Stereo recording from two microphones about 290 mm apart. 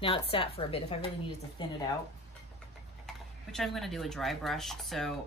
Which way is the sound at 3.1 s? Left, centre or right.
Centre.